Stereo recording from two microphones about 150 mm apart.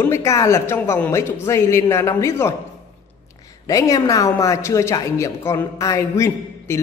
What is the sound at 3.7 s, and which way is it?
A woman's voice, 20° left (ahead or behind).